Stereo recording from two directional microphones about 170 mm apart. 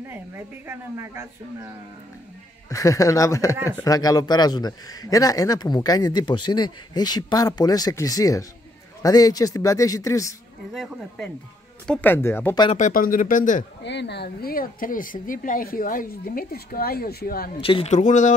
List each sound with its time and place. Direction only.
0.7 s a man's voice: 15° right (ahead or behind)
2.7 s a man's voice: 20° left (ahead or behind)
10.7 s speech: centre (ahead or behind)
11.9 s speech: 10° left (ahead or behind)
12.7 s speech: 50° left (ahead or behind)
13.8 s speech: 85° left; by 17.5 s 65° left (ahead or behind)
17.6 s speech: 35° left (ahead or behind)